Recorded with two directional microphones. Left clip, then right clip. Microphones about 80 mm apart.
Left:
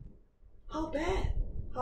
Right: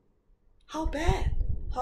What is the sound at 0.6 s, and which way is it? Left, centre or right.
Speech, right.